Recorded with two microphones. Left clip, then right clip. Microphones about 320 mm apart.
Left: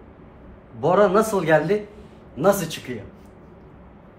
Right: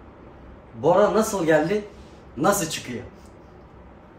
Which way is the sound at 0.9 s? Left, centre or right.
Centre.